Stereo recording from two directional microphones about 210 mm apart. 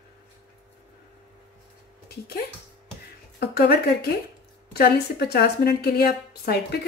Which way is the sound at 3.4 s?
45° left (ahead or behind).